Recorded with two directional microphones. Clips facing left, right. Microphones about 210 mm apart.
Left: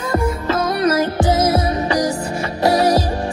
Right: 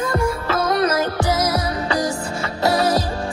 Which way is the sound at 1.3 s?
25° left (ahead or behind).